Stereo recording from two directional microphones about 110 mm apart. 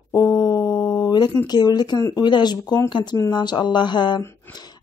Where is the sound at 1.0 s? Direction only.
40° left (ahead or behind).